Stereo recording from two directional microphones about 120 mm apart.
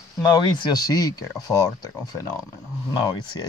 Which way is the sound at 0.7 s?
30° left (ahead or behind).